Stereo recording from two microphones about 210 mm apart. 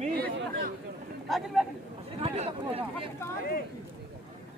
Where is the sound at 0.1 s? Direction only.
45° right (ahead or behind).